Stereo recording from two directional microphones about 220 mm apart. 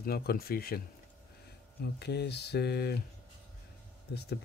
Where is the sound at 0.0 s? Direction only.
45° left (ahead or behind).